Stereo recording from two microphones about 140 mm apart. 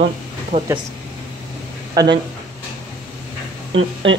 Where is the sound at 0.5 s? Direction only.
40° right (ahead or behind).